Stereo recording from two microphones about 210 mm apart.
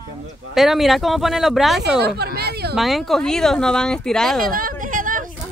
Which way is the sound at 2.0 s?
50° right (ahead or behind).